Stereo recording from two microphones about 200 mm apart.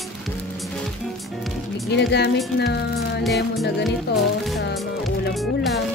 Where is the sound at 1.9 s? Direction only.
60° left (ahead or behind).